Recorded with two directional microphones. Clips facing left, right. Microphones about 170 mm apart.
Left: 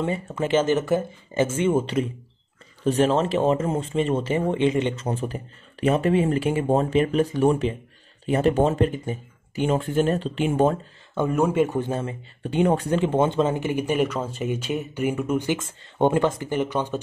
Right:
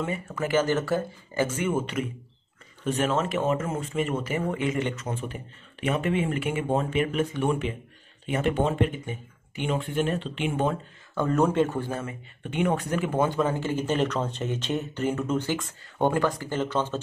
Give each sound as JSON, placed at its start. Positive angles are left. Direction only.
{"t": 0.0, "sound": "speech", "side_deg": 25}
{"t": 5.0, "sound": "speech", "side_deg": 35}
{"t": 11.1, "sound": "speech", "side_deg": 10}